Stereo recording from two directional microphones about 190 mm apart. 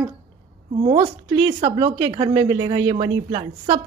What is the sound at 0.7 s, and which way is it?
A woman's voice, 30° right (ahead or behind).